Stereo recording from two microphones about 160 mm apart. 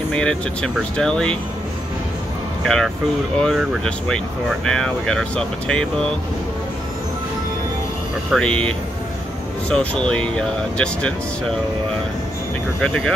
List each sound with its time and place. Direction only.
0.1 s speech: 5° left (ahead or behind)
2.6 s speech: 5° left (ahead or behind)
8.3 s speech: 5° left (ahead or behind)
12.8 s speech: 5° left (ahead or behind)